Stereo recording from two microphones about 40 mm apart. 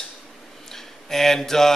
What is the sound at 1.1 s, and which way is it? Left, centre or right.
Speech, centre.